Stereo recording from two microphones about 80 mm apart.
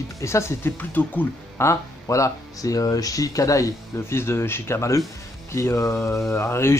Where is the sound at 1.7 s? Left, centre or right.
Left.